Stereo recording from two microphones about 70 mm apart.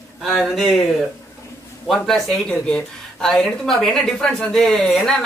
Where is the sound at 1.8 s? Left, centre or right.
Centre.